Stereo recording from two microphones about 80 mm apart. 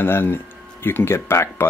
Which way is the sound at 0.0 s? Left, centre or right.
Left.